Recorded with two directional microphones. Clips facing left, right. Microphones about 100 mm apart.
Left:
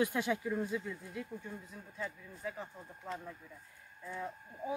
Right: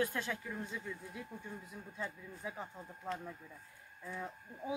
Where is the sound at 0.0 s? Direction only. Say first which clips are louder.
Left 4 dB; 15° left (ahead or behind).